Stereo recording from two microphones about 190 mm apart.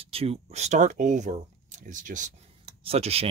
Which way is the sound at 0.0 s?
30° right (ahead or behind).